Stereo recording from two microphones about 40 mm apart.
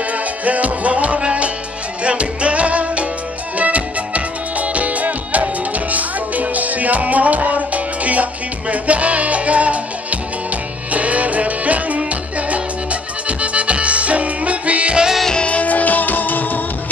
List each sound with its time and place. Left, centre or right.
0.5 s music: right
10.9 s music: right
15.3 s music: left